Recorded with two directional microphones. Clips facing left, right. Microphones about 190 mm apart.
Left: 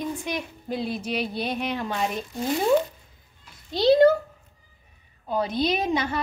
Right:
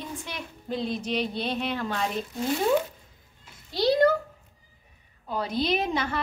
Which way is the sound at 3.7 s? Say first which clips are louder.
Left 5 dB; 25° left (ahead or behind).